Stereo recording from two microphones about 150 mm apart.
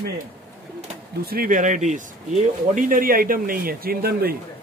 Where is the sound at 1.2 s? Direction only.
85° right; by 2.1 s 50° right (ahead or behind).